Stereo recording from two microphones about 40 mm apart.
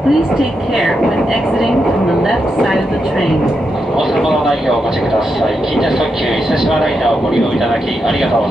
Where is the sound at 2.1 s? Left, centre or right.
Centre.